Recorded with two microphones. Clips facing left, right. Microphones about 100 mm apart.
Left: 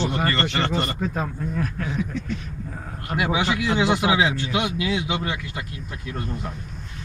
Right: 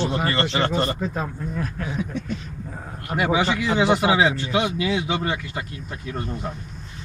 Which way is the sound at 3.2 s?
35° right (ahead or behind).